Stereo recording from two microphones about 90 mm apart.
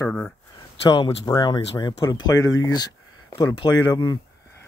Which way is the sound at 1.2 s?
50° left (ahead or behind).